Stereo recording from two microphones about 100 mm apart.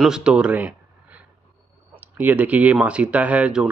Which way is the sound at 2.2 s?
15° right (ahead or behind).